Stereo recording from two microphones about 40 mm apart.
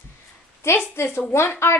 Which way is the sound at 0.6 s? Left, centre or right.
Left.